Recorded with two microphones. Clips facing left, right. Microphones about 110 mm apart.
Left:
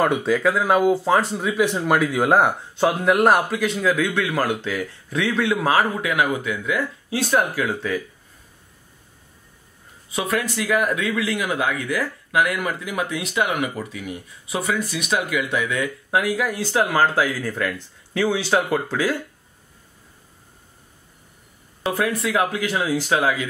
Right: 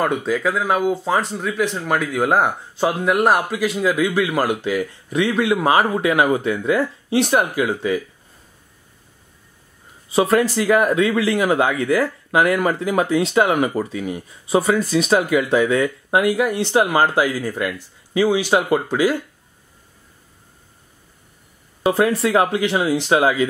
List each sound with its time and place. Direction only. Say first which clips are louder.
0.0 s speech: left 1 dB; centre (ahead or behind); by 8.0 s 15° right (ahead or behind)
10.1 s speech: right 8 dB; 35° right (ahead or behind); by 19.1 s 15° right (ahead or behind)
21.9 s speech: right 4 dB; 30° right (ahead or behind)